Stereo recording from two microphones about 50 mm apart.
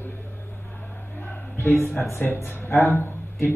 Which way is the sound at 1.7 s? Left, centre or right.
Left.